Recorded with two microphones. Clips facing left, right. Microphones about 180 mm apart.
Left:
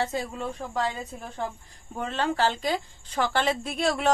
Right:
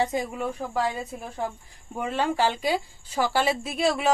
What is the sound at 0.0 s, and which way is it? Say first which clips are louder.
Speech: right 3 dB; 15° right (ahead or behind).